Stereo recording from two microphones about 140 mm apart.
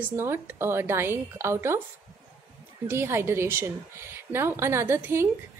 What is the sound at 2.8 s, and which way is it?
A woman's voice, 20° right (ahead or behind).